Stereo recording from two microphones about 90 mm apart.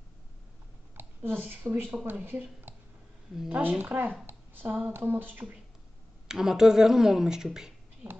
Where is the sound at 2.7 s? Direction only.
25° right (ahead or behind).